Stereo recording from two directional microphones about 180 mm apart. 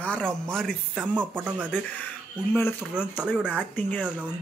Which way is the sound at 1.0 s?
10° right (ahead or behind).